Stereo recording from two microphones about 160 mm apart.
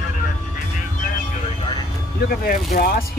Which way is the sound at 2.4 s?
65° left (ahead or behind).